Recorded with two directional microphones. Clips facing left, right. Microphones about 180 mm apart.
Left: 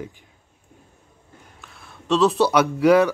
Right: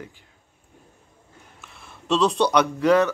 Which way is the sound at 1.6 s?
Centre (ahead or behind).